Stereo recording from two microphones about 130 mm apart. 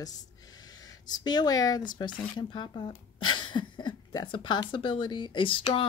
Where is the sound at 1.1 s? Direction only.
30° left (ahead or behind).